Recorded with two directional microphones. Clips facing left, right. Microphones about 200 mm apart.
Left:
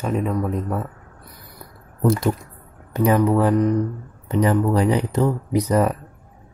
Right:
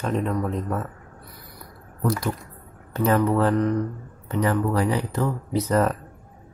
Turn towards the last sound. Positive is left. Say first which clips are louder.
# left 3 dB
turn(degrees=10)  # may be behind; listen again after turning